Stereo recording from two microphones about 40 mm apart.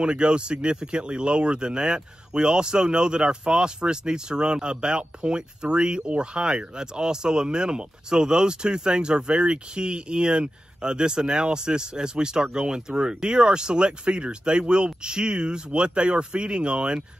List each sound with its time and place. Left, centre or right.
0.0 s speech: right